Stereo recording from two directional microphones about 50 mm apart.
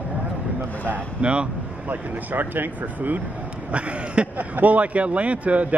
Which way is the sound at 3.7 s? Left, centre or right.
Right.